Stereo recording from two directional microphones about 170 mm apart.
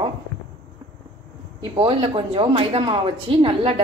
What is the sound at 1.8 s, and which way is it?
A woman's voice, 35° right (ahead or behind).